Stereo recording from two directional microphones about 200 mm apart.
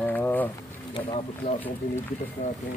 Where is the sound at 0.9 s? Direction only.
25° left (ahead or behind).